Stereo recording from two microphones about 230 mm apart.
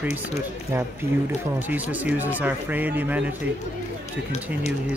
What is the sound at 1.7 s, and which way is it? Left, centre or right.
Speech, centre.